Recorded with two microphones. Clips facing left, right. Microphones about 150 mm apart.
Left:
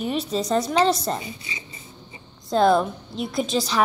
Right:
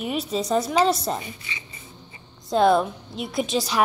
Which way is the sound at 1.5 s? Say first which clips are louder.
Left 1 dB; 35° left (ahead or behind).